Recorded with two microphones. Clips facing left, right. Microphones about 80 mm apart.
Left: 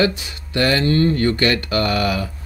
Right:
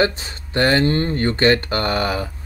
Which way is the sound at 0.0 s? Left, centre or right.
Right.